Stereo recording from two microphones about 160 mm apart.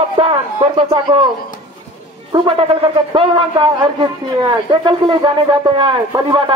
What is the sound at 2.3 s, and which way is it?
Speech, 30° right (ahead or behind).